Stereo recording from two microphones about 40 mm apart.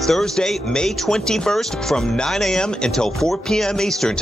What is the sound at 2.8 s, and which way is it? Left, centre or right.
Speech, centre.